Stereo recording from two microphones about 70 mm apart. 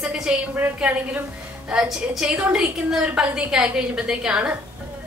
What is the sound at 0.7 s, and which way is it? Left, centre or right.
A woman's voice, centre.